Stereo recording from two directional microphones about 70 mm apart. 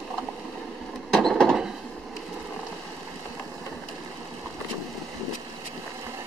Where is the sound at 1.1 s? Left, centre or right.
Centre.